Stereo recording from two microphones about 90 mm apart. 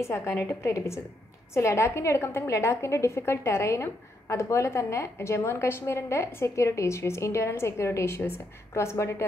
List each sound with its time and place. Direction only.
0.0 s a woman's voice: 30° left (ahead or behind)